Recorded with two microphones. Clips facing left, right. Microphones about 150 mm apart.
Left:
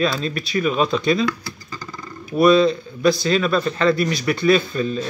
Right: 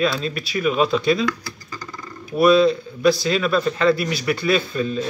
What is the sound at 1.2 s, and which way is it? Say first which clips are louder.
Computer keyboard: left 1 dB; 25° left (ahead or behind).